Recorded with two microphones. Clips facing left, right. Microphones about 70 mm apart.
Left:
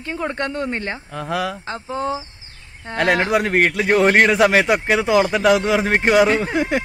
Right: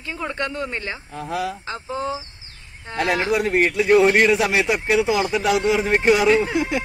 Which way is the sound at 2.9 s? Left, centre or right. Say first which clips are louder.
Left 3 dB; left.